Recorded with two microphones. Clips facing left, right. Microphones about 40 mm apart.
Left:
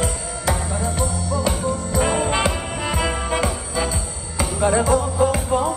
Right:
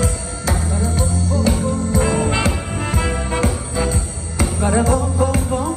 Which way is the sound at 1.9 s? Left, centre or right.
Left.